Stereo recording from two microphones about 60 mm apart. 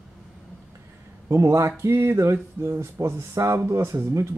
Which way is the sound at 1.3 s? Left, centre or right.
Right.